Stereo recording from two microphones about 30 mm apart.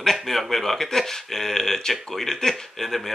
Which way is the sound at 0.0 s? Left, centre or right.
Centre.